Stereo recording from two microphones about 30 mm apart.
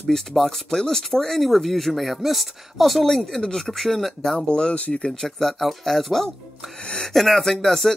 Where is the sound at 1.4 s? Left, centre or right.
Centre.